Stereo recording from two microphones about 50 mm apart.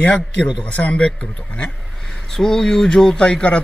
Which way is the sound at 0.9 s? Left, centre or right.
Centre.